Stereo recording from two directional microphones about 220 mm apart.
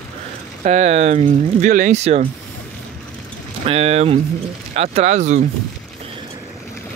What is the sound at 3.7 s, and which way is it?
Speech, 30° right (ahead or behind).